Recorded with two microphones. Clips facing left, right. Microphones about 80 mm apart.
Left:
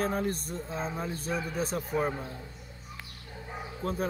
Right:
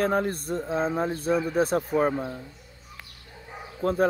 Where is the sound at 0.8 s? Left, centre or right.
Right.